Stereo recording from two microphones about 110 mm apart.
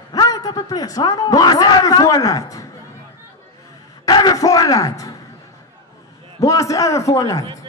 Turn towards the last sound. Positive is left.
turn(degrees=30)  # may be behind; listen again after turning